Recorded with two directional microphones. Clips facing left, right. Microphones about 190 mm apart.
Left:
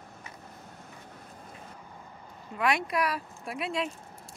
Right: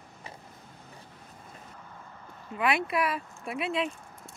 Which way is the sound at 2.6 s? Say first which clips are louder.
Even; 5° right (ahead or behind).